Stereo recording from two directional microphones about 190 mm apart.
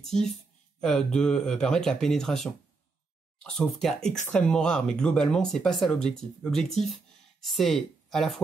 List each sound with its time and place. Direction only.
0.0 s speech: centre (ahead or behind)